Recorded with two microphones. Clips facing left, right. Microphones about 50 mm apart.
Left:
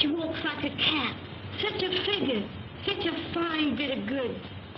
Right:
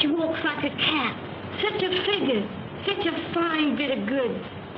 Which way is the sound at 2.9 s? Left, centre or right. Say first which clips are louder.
Right 4 dB; centre.